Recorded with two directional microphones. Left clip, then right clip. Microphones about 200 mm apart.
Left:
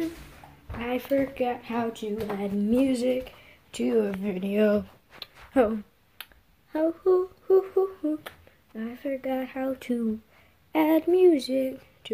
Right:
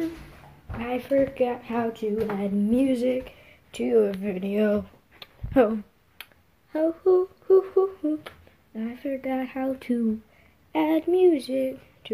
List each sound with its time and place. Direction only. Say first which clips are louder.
0.7 s speech: right 3 dB; 5° left (ahead or behind)
5.5 s a sound: right 2 dB; centre (ahead or behind)
6.7 s speech: right 2 dB; 5° left (ahead or behind)
10.7 s speech: left 1 dB; 15° left (ahead or behind)